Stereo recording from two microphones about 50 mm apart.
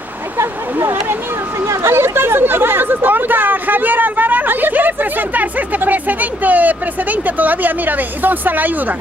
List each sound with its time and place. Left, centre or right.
0.4 s speech: right